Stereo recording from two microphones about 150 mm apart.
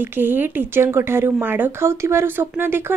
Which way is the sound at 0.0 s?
15° right (ahead or behind).